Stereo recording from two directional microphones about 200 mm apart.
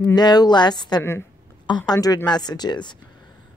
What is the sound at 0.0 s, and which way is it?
A woman's voice, 20° left (ahead or behind).